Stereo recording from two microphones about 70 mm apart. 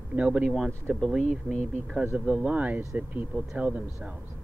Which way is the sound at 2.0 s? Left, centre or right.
Right.